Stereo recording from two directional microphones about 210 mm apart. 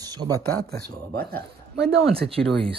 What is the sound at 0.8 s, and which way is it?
Speech, 50° right (ahead or behind).